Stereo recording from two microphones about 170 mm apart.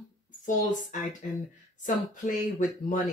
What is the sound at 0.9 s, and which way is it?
Speech, 50° left (ahead or behind).